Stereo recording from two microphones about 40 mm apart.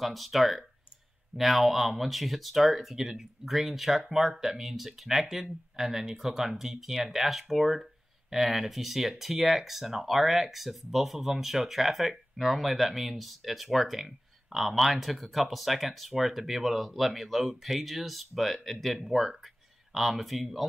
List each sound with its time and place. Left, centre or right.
0.0 s speech: centre